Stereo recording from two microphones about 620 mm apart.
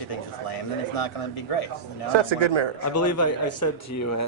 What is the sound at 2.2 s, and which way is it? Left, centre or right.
Speech, right.